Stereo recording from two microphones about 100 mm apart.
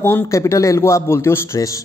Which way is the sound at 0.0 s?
25° left (ahead or behind).